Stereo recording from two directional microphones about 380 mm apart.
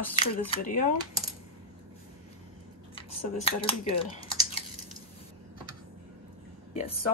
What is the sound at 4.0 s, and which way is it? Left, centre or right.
Typing, centre.